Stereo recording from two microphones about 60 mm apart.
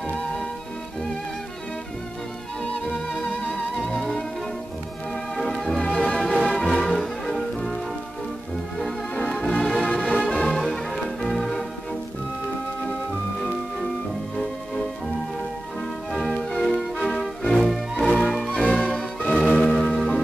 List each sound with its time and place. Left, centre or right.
3.9 s music: centre
5.3 s music: centre
9.3 s music: centre
16.1 s music: centre
18.5 s music: centre